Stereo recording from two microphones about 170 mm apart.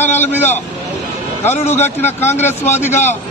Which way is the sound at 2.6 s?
45° left (ahead or behind).